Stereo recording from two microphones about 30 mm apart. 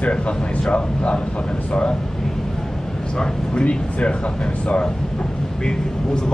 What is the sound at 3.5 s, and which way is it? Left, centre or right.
A man's voice, left.